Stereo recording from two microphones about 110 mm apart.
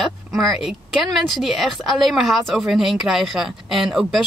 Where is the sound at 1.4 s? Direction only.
Centre (ahead or behind).